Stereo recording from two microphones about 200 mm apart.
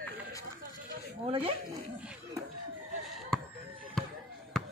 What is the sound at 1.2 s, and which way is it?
Speech, 30° right (ahead or behind).